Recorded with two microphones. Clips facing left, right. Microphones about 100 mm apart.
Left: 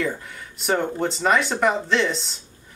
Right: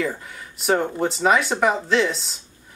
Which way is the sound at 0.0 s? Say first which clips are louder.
Even; centre (ahead or behind).